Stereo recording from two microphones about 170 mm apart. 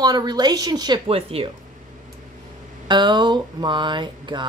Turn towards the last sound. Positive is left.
turn(degrees=-25)  # may be behind; listen again after turning